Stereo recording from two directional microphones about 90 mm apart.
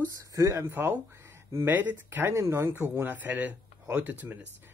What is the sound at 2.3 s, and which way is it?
Speech, 30° right (ahead or behind).